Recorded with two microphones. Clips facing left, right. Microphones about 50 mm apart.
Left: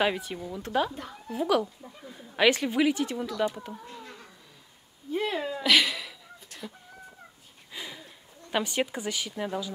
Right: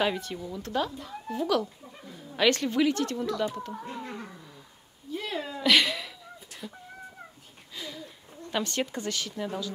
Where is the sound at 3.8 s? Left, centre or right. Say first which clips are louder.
Right 6 dB; right.